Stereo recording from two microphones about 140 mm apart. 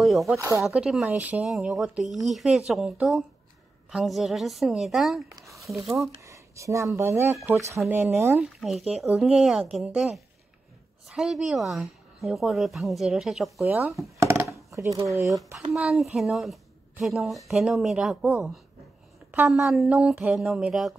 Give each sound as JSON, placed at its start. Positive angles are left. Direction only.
{"t": 0.0, "sound": "speech", "side_deg": 0}
{"t": 5.3, "sound": "a sound", "side_deg": -20}
{"t": 5.7, "sound": "speech", "side_deg": 0}
{"t": 5.9, "sound": "speech", "side_deg": -20}
{"t": 8.5, "sound": "speech", "side_deg": 0}
{"t": 13.9, "sound": "a sound", "side_deg": -20}
{"t": 15.2, "sound": "speech", "side_deg": 0}